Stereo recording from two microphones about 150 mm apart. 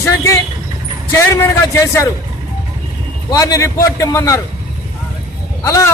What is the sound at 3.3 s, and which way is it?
A man's voice, 20° left (ahead or behind).